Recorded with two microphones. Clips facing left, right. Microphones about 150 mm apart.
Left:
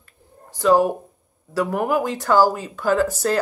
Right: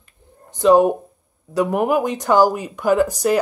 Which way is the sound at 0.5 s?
20° right (ahead or behind).